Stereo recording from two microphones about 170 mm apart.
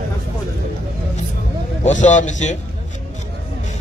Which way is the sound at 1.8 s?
45° left (ahead or behind).